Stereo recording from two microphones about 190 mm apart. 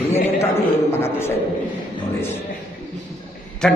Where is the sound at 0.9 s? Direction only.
15° left (ahead or behind).